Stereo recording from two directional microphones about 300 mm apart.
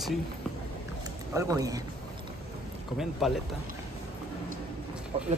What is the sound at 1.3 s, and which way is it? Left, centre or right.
Speech, centre.